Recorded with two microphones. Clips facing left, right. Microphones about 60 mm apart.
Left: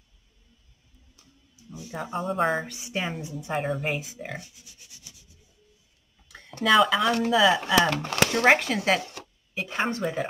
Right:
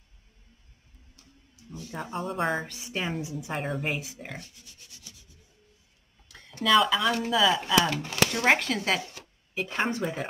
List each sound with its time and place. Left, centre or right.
1.7 s a sound: centre
2.0 s a woman's voice: centre
6.6 s speech: centre
7.9 s speech: left
8.5 s a woman's voice: centre